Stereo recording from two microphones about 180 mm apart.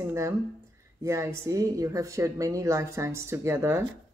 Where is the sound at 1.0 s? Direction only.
15° right (ahead or behind).